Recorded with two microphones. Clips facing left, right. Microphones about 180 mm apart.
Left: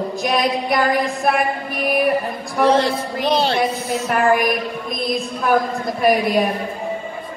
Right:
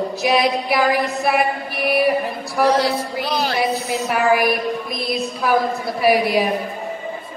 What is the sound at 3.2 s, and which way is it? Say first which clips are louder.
Music: left 6 dB; 30° left (ahead or behind).